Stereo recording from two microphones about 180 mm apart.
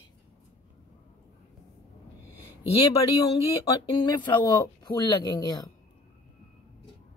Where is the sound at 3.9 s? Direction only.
25° left (ahead or behind).